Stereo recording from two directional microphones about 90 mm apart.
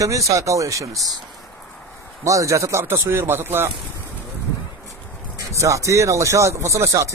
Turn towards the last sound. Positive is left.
turn(degrees=-35)  # may be behind; listen again after turning